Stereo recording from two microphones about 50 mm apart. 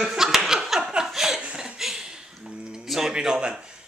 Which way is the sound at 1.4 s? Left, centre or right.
Right.